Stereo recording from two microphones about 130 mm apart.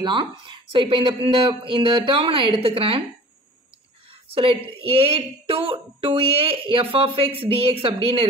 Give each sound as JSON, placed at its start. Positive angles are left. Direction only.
{"t": 0.0, "sound": "speech", "side_deg": -35}
{"t": 4.1, "sound": "a woman's voice", "side_deg": -45}